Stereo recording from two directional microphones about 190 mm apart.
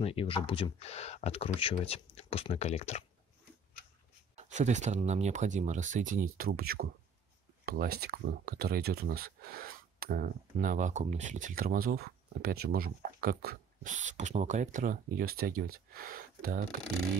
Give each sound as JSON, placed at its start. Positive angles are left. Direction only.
{"t": 0.0, "sound": "speech", "side_deg": 30}
{"t": 4.4, "sound": "speech", "side_deg": -40}